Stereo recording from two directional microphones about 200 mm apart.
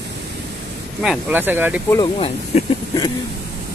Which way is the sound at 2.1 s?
30° left (ahead or behind).